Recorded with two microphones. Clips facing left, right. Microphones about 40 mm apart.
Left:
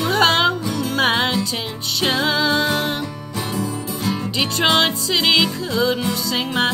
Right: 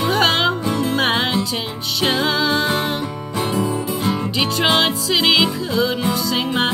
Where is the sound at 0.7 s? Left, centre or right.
Right.